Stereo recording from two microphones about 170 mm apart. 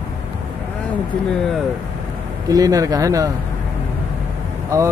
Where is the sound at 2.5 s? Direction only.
20° right (ahead or behind).